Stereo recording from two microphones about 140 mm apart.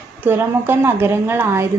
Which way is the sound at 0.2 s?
15° right (ahead or behind).